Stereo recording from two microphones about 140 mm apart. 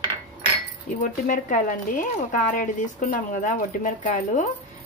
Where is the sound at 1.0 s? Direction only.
65° left (ahead or behind).